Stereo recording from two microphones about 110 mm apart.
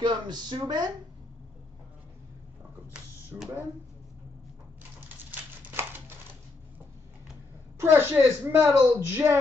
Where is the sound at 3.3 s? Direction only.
20° right (ahead or behind).